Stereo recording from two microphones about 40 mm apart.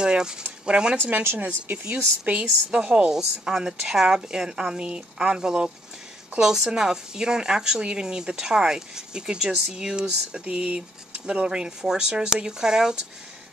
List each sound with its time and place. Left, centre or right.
0.0 s speech: right
3.1 s speech: centre
10.4 s speech: right